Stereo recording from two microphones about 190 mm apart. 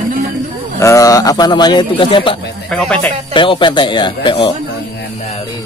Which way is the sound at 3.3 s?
25° left (ahead or behind).